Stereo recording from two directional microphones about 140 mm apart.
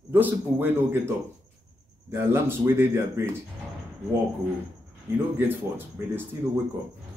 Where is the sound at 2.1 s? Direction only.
20° right (ahead or behind).